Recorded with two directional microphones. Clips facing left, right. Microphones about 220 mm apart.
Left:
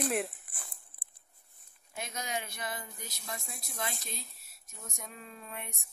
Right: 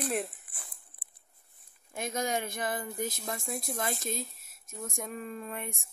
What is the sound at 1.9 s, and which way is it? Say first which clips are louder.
Speech: right 7 dB; 50° right (ahead or behind).